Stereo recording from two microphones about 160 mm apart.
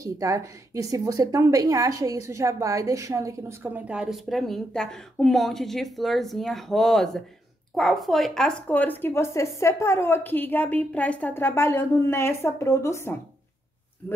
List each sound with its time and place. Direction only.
0.0 s a woman's voice: 20° right (ahead or behind); by 13.1 s 20° left (ahead or behind)